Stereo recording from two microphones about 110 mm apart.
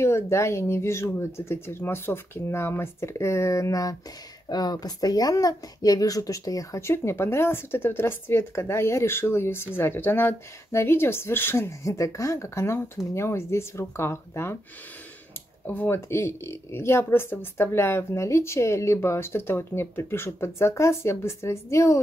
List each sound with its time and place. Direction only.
0.0 s speech: 25° left (ahead or behind)
15.6 s speech: 15° left (ahead or behind)